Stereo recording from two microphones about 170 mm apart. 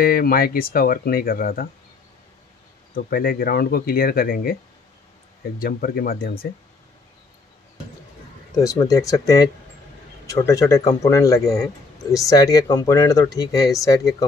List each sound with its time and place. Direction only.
0.0 s speech: 60° left (ahead or behind)
2.9 s speech: 60° left (ahead or behind)
5.6 s speech: 60° left (ahead or behind)
8.5 s speech: 20° left (ahead or behind)